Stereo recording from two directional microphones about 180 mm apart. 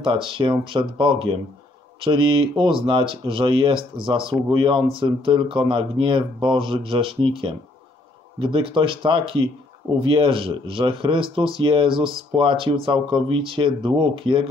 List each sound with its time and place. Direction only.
0.0 s speech: 30° right (ahead or behind)
8.4 s speech: 25° right (ahead or behind)